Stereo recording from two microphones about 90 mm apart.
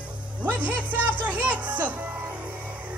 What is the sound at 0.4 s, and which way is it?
Speech, 15° right (ahead or behind).